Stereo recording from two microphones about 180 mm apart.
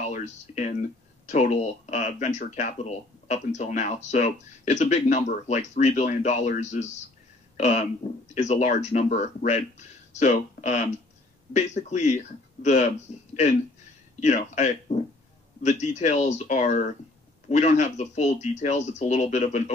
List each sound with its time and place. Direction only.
0.0 s speech: 40° left (ahead or behind)
14.2 s speech: 40° left (ahead or behind)